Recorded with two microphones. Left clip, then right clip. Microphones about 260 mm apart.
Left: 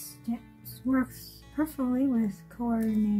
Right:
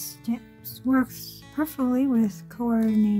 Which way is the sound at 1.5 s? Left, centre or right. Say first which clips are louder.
Right 4 dB; right.